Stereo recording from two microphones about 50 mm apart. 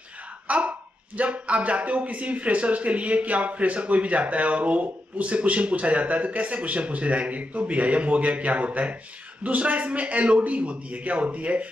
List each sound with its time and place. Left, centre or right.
0.5 s a man's voice: right